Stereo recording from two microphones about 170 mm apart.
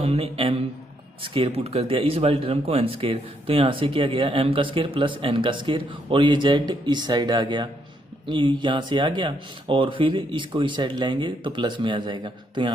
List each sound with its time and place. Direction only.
0.0 s speech: 35° right (ahead or behind)